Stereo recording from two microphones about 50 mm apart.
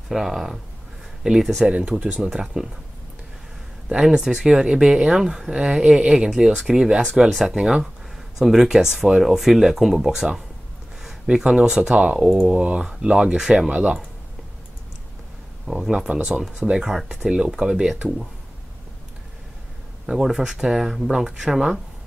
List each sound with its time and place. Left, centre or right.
0.1 s speech: centre
1.7 s speech: right
2.1 s speech: centre
4.0 s speech: centre
7.2 s speech: centre
7.4 s speech: centre
15.6 s speech: centre
18.0 s speech: right
20.1 s speech: centre